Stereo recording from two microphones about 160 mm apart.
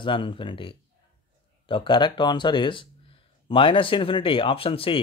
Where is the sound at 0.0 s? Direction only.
30° left (ahead or behind).